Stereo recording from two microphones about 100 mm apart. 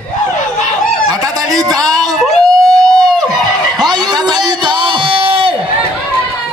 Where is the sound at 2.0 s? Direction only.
Centre (ahead or behind).